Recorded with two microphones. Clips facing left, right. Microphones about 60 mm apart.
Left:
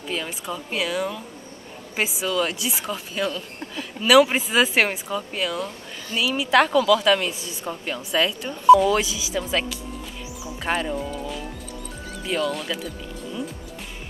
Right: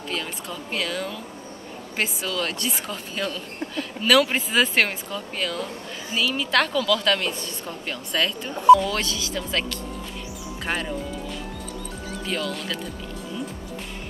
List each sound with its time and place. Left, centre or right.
0.1 s a woman's voice: centre